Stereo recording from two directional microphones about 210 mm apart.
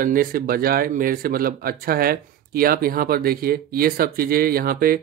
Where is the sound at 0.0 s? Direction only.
40° right (ahead or behind).